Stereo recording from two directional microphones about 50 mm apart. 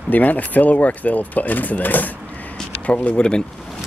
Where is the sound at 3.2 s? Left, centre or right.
Centre.